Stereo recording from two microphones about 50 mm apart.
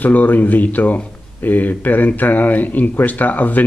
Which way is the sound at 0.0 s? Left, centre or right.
Left.